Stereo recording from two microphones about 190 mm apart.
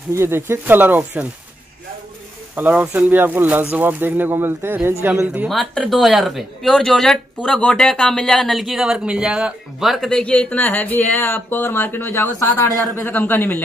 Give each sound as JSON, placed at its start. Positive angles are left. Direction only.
{"t": 0.1, "sound": "speech", "side_deg": -15}
{"t": 2.5, "sound": "a man's voice", "side_deg": -10}